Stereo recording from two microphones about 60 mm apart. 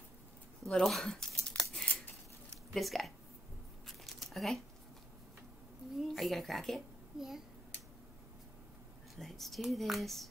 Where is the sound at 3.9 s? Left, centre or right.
Centre.